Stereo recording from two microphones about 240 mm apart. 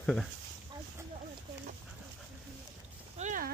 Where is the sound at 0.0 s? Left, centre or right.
Centre.